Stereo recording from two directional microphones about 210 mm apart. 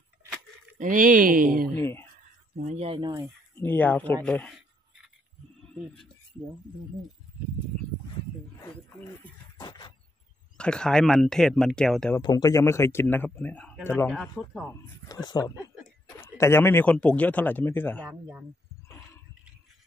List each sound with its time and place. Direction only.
0.7 s speech: 40° right (ahead or behind)
1.8 s speech: 10° left (ahead or behind)
2.5 s speech: 30° right (ahead or behind)
3.5 s speech: 10° left (ahead or behind)
9.6 s a sound: 20° left (ahead or behind)
10.6 s speech: 5° left (ahead or behind)
12.2 s speech: 20° left (ahead or behind); by 14.6 s centre (ahead or behind)
14.6 s speech: 20° left (ahead or behind)